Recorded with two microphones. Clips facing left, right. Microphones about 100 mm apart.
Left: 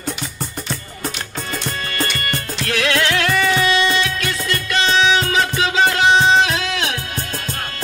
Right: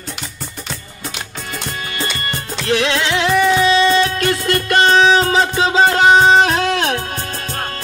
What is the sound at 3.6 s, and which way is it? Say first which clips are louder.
Music: right 5 dB; 30° right (ahead or behind).